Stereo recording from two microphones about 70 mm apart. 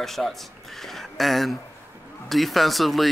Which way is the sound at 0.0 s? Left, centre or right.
Centre.